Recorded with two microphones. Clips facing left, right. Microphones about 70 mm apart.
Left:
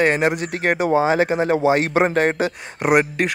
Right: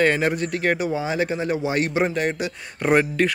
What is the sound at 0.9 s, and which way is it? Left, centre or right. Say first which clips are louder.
Speech: left 7 dB; left.